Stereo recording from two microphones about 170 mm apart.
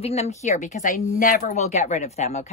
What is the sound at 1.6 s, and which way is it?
Speech, 40° left (ahead or behind).